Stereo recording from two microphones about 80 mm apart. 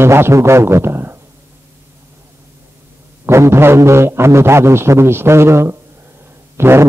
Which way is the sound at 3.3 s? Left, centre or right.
Right.